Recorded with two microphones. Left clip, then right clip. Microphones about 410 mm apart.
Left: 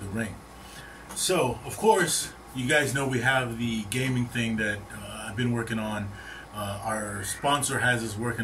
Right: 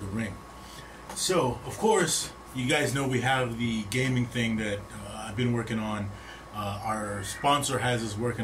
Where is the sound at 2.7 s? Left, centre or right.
Centre.